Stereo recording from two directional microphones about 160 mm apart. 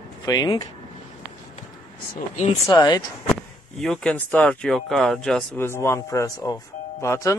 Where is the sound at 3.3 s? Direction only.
Centre (ahead or behind).